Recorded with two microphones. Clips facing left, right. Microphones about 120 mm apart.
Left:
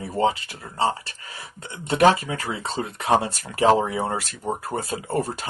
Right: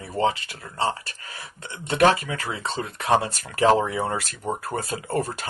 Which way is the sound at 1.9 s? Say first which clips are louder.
Left 2 dB; 30° left (ahead or behind).